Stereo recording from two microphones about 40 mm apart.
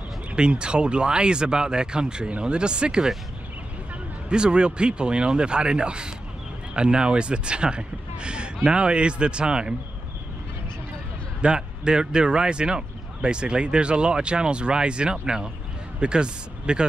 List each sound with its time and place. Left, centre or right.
0.4 s speech: right
4.3 s speech: right
11.4 s speech: right